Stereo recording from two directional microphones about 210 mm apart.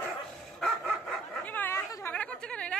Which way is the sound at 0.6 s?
Centre (ahead or behind).